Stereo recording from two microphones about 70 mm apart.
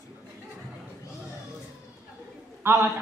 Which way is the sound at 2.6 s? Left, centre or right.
Right.